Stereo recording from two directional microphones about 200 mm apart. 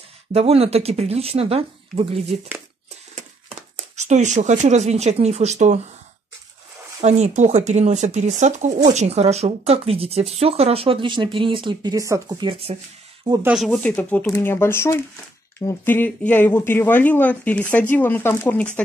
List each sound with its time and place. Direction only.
0.3 s speech: 30° right (ahead or behind)
7.0 s speech: 35° right (ahead or behind)
13.3 s speech: 10° right (ahead or behind); by 18.7 s 10° left (ahead or behind)